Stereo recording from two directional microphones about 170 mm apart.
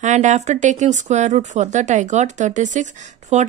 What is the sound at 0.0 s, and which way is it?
A woman's voice, 45° right (ahead or behind).